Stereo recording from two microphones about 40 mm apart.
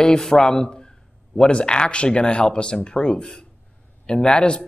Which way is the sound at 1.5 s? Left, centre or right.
Left.